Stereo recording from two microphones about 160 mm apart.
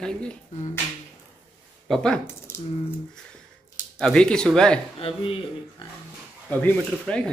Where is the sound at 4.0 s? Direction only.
5° left (ahead or behind).